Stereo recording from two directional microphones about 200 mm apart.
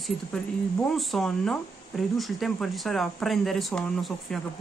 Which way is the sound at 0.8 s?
Centre (ahead or behind).